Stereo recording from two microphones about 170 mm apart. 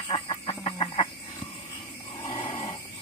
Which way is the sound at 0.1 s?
30° left (ahead or behind).